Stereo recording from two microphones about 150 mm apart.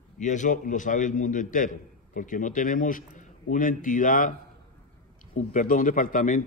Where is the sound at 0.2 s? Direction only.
55° left (ahead or behind).